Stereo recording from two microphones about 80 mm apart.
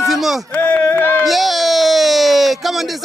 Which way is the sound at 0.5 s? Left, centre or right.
Left.